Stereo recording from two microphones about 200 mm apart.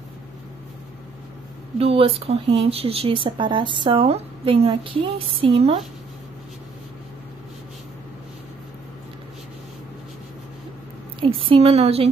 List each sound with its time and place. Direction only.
1.8 s speech: 30° right (ahead or behind)
11.1 s a woman's voice: 25° right (ahead or behind)